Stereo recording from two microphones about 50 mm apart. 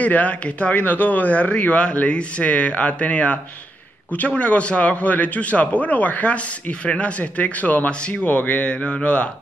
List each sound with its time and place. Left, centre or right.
0.0 s a man's voice: left
8.7 s a man's voice: left